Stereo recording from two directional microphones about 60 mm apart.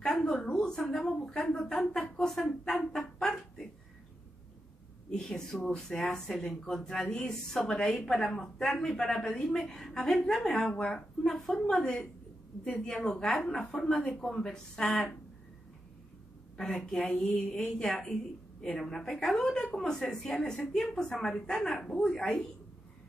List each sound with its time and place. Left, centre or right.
0.1 s speech: centre
5.1 s a woman's voice: centre
16.5 s speech: centre
18.8 s speech: centre